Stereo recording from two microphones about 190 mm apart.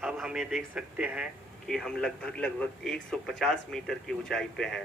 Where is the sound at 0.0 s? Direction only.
5° right (ahead or behind).